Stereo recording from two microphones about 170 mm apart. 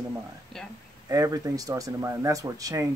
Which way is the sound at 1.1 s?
20° right (ahead or behind).